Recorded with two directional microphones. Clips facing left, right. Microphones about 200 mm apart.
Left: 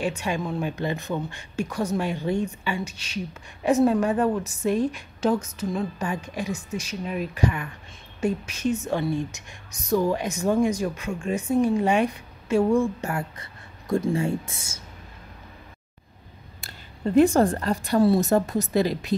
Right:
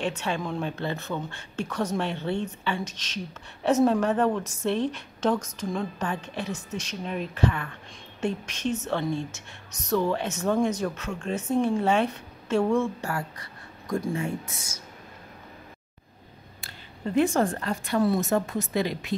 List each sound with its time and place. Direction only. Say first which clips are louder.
0.0 s a woman's voice: left 2 dB; 10° left (ahead or behind)
13.0 s speech: left 2 dB; 20° left (ahead or behind)
16.6 s speech: left 5 dB; 40° left (ahead or behind)